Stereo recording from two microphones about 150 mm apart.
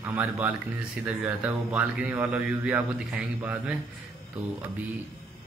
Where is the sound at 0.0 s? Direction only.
10° right (ahead or behind).